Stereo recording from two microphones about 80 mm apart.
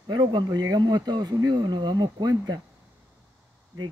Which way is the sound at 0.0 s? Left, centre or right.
Right.